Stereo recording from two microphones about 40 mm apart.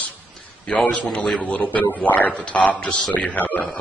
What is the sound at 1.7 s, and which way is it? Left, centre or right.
Speech, left.